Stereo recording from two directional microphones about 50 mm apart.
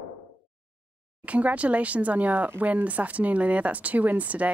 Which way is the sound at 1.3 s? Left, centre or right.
Right.